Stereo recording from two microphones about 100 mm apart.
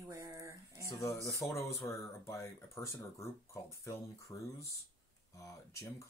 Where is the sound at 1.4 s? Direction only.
30° left (ahead or behind).